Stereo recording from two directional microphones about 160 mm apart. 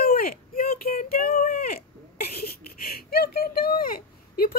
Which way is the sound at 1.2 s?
55° left (ahead or behind).